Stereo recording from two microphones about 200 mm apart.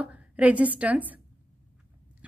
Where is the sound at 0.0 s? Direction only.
5° right (ahead or behind).